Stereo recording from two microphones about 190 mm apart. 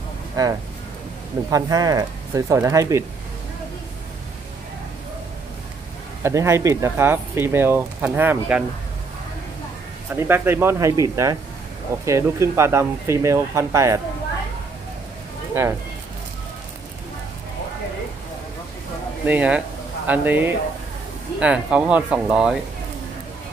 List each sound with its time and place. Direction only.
0.4 s speech: 20° right (ahead or behind)
6.2 s speech: 15° right (ahead or behind)
10.1 s speech: 10° right (ahead or behind)
15.6 s speech: 15° right (ahead or behind)
19.2 s speech: 5° right (ahead or behind)